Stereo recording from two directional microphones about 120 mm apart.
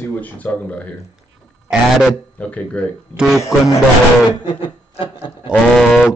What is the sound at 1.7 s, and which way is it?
Speech, 5° right (ahead or behind).